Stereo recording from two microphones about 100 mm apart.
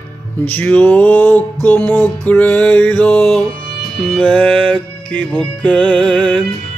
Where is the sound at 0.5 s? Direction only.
15° left (ahead or behind).